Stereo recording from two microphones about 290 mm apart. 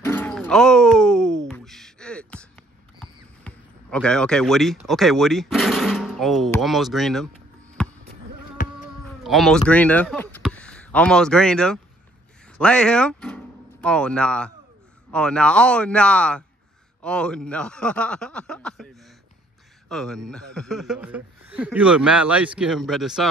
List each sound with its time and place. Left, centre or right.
0.0 s a sound: centre
3.0 s speech: centre
8.6 s insect: left
9.2 s speech: centre